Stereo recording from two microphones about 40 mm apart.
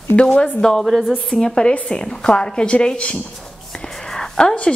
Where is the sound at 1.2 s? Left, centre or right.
Centre.